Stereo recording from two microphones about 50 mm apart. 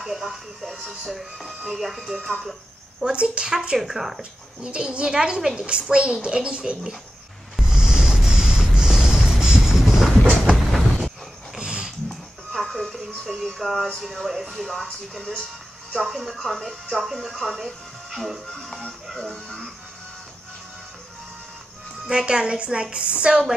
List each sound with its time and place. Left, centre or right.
0.0 s speech: centre
3.0 s speech: centre
4.2 s a woman's voice: centre
7.6 s vehicle: centre
10.5 s a sound: centre
11.5 s dog: centre
12.1 s music: centre
14.6 s speech: centre
22.0 s a woman's voice: centre